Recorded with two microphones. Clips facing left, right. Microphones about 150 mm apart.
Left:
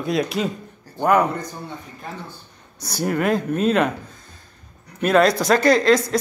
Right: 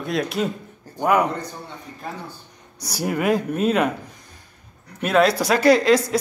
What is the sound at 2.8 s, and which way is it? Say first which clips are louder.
Speech: even; 10° right (ahead or behind).